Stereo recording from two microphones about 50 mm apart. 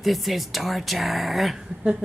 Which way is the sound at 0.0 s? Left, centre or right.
Centre.